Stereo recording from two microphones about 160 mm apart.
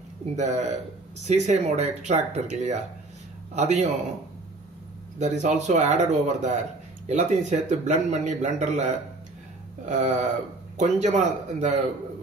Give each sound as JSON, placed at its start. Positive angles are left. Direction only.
{"t": 0.4, "sound": "a man's voice", "side_deg": -45}
{"t": 5.2, "sound": "a man's voice", "side_deg": -45}
{"t": 9.8, "sound": "a man's voice", "side_deg": -50}